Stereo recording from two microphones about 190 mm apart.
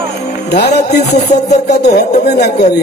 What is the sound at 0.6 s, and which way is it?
A man's voice, 60° left (ahead or behind).